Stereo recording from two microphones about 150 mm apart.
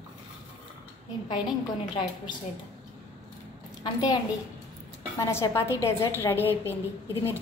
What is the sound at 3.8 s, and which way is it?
Speech, 25° left (ahead or behind).